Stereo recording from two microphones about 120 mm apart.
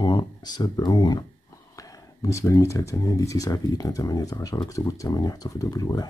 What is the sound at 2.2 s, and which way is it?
Speech, 25° left (ahead or behind).